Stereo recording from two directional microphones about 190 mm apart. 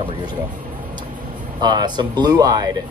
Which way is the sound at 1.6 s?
20° right (ahead or behind).